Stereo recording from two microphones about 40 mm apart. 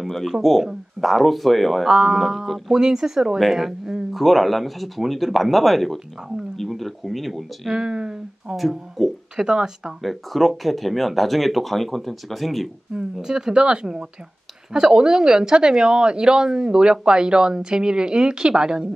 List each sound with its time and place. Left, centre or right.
0.1 s speech: centre
1.9 s speech: centre
4.1 s speech: centre
7.8 s speech: right
8.5 s speech: centre
9.4 s speech: centre
10.0 s speech: centre
12.9 s speech: centre